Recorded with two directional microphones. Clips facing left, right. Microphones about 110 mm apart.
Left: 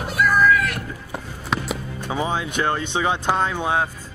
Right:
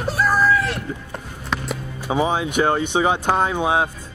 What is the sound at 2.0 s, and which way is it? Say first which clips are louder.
Speech: right 5 dB; 15° right (ahead or behind).